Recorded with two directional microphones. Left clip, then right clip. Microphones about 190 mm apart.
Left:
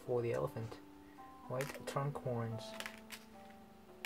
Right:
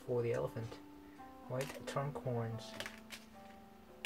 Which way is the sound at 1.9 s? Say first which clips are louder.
Even; 30° left (ahead or behind).